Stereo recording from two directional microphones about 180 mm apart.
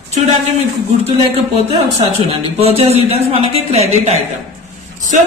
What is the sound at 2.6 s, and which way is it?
Speech, 35° right (ahead or behind).